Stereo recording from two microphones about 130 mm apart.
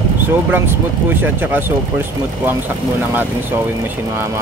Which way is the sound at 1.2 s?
15° right (ahead or behind).